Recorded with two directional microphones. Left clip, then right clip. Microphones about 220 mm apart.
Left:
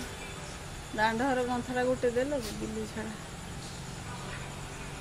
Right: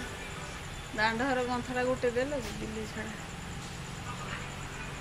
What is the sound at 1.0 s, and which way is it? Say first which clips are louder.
Speech: left 1 dB; 25° left (ahead or behind).